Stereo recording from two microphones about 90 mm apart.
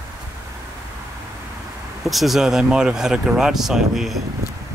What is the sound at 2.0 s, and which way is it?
Speech, centre (ahead or behind).